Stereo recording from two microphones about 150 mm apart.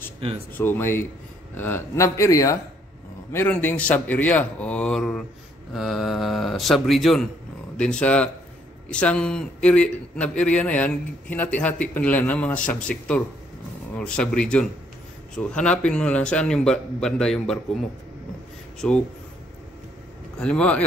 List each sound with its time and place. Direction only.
0.2 s speech: 40° right (ahead or behind)
0.6 s a man's voice: 15° left (ahead or behind)
3.3 s a man's voice: 10° left (ahead or behind)
20.3 s a man's voice: 5° left (ahead or behind)